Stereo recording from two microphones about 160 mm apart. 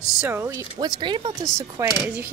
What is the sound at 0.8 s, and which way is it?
Speech, 30° right (ahead or behind).